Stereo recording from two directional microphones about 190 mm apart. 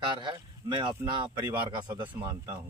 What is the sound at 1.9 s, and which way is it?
Speech, 20° right (ahead or behind).